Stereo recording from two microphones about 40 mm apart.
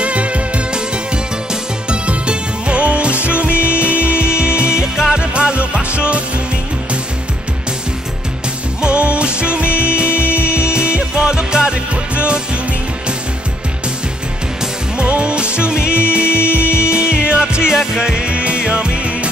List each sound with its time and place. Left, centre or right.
0.0 s music: right
8.8 s music: right
11.9 s music: right
15.0 s music: right